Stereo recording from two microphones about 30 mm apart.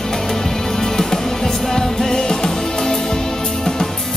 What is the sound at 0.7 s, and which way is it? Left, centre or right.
Music, centre.